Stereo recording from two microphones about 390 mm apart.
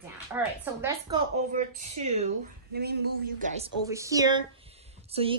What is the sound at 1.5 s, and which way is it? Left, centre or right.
A woman's voice, centre.